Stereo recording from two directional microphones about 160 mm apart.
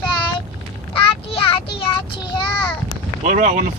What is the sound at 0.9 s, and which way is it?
Child singing, 35° left (ahead or behind).